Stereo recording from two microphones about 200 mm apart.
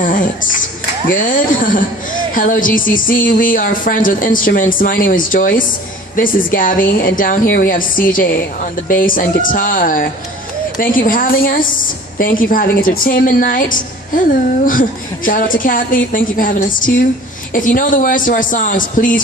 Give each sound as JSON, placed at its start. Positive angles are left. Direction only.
{"t": 0.0, "sound": "a woman's voice", "side_deg": 40}